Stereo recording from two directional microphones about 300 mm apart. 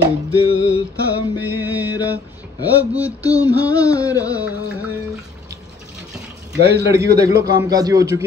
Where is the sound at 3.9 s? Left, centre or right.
Centre.